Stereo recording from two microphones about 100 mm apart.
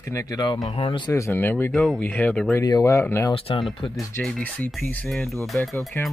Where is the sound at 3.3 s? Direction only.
65° left (ahead or behind).